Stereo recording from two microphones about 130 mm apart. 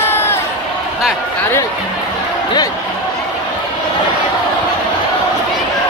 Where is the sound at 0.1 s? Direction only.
20° left (ahead or behind).